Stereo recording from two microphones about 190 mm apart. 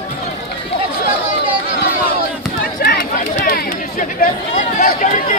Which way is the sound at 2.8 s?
50° left (ahead or behind).